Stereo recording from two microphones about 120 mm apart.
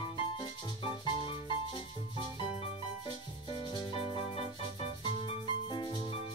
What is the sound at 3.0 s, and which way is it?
Music, 45° left (ahead or behind).